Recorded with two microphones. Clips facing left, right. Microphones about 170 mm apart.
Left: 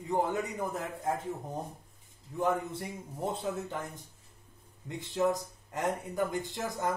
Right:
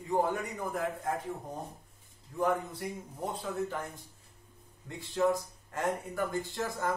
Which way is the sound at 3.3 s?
25° left (ahead or behind).